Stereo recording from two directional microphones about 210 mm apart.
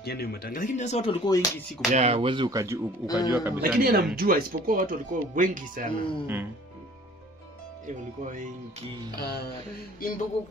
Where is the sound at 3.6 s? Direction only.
45° right (ahead or behind).